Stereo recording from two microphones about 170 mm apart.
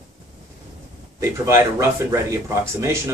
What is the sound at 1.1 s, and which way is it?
Speech, 15° right (ahead or behind).